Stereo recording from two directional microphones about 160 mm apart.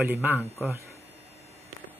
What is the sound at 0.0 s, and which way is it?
Speech, 15° right (ahead or behind).